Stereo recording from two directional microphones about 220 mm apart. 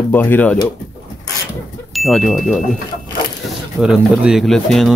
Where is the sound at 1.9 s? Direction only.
Centre (ahead or behind).